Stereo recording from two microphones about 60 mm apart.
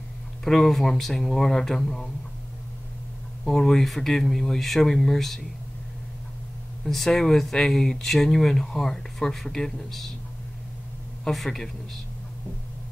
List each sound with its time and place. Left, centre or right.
0.4 s speech: centre
3.4 s speech: centre
6.8 s speech: centre
11.2 s speech: centre